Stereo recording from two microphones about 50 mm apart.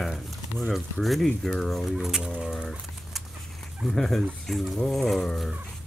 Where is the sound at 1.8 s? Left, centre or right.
Centre.